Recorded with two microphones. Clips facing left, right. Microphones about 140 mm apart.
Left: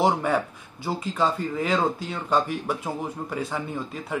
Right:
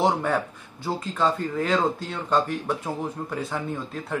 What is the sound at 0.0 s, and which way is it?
Speech, 5° left (ahead or behind).